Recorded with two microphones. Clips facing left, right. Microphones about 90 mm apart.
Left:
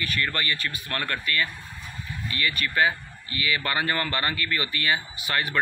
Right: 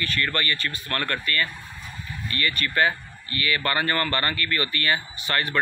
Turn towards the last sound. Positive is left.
turn(degrees=10)  # may be behind; listen again after turning